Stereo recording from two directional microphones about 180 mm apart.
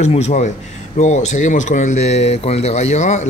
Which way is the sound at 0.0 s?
40° left (ahead or behind).